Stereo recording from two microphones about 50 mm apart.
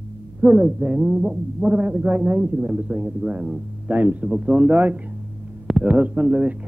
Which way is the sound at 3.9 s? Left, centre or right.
Right.